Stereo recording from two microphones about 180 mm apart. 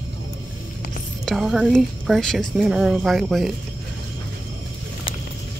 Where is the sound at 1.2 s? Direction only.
Centre (ahead or behind).